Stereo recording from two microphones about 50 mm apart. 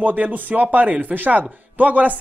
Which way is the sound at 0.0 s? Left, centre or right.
Right.